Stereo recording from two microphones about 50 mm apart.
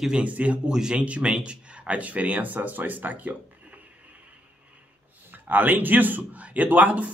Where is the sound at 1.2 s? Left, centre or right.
Centre.